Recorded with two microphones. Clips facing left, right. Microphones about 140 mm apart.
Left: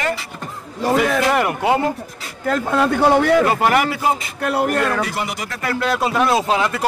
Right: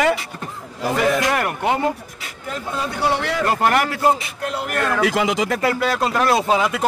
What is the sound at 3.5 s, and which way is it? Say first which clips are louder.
Speech: left 2 dB; 5° left (ahead or behind).